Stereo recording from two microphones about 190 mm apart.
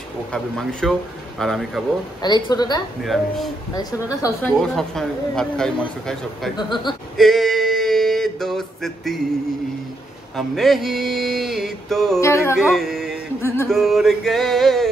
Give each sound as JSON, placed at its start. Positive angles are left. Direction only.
{"t": 0.3, "sound": "speech", "side_deg": 5}
{"t": 2.2, "sound": "a woman's voice", "side_deg": 20}
{"t": 3.0, "sound": "speech", "side_deg": 0}
{"t": 3.7, "sound": "a woman's voice", "side_deg": 20}
{"t": 4.4, "sound": "speech", "side_deg": 0}
{"t": 6.5, "sound": "a woman's voice", "side_deg": 25}
{"t": 7.2, "sound": "a sound", "side_deg": 0}
{"t": 10.3, "sound": "speech", "side_deg": 0}
{"t": 12.2, "sound": "music", "side_deg": 15}
{"t": 12.5, "sound": "music", "side_deg": 0}
{"t": 13.7, "sound": "speech", "side_deg": 0}